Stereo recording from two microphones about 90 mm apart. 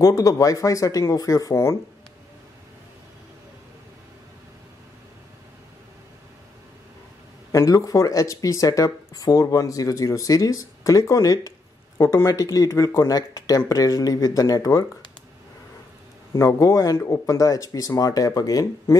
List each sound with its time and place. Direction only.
0.0 s speech: 40° left (ahead or behind)
7.5 s speech: 40° left (ahead or behind)
16.3 s speech: 35° left (ahead or behind)